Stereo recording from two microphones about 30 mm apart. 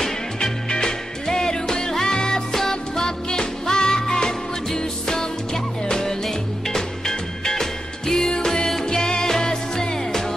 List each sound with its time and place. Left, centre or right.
0.4 s music: left
2.5 s music: centre